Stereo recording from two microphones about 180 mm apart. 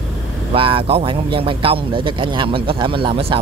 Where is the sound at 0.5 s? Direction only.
30° right (ahead or behind).